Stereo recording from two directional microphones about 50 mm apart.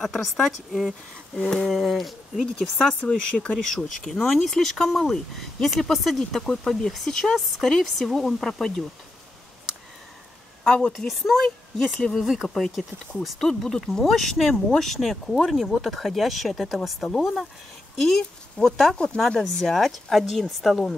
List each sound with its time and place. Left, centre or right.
0.0 s speech: centre
1.3 s speech: centre
1.7 s speech: centre
2.8 s speech: centre
3.5 s speech: centre
10.6 s speech: centre
10.9 s speech: centre
17.9 s speech: centre